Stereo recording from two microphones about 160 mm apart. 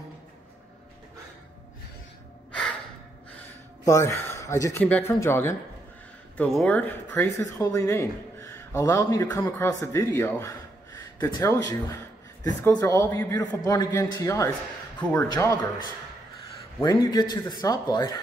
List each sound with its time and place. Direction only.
3.8 s speech: 20° left (ahead or behind)
6.3 s speech: 5° left (ahead or behind); by 18.2 s 25° left (ahead or behind)